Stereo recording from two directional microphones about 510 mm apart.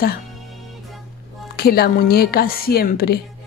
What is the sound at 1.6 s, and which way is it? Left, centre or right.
Speech, centre.